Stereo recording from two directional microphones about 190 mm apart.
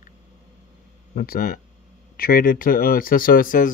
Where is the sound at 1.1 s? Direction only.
50° left (ahead or behind).